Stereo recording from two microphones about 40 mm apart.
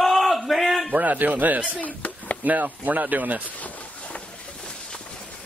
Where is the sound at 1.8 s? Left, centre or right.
Left.